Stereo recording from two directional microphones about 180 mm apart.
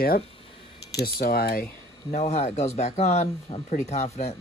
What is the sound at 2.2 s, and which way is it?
Speech, 35° left (ahead or behind).